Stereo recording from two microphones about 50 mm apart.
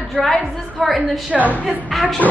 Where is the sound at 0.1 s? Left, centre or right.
Centre.